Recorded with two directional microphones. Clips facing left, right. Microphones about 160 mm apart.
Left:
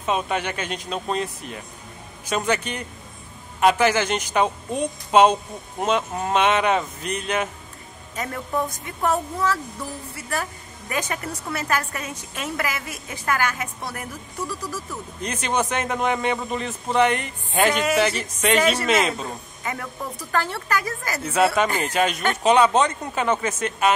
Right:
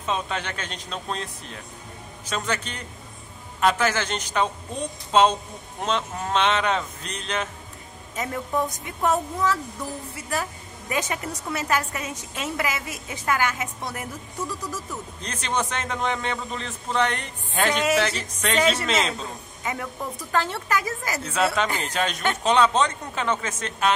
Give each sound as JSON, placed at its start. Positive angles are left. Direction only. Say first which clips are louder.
{"t": 0.0, "sound": "a woman's voice", "louder": "left 4 dB", "side_deg": 10}
{"t": 8.2, "sound": "a woman's voice", "louder": "even", "side_deg": -20}
{"t": 10.9, "sound": "a woman's voice", "louder": "even", "side_deg": -20}
{"t": 15.2, "sound": "a woman's voice", "louder": "left 4 dB", "side_deg": 10}
{"t": 19.6, "sound": "a woman's voice", "louder": "right 1 dB", "side_deg": -15}
{"t": 21.2, "sound": "a woman's voice", "louder": "left 5 dB", "side_deg": 5}